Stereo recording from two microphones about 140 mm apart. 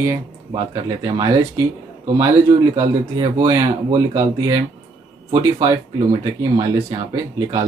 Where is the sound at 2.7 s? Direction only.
30° right (ahead or behind).